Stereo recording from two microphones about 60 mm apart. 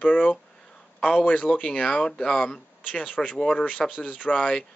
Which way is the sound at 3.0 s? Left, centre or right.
Left.